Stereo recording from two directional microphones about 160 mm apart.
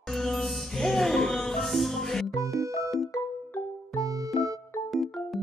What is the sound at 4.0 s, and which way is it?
Music, 20° right (ahead or behind).